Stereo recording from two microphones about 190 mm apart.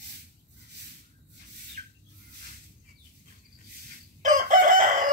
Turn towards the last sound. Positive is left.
turn(degrees=-45)  # may be behind; listen again after turning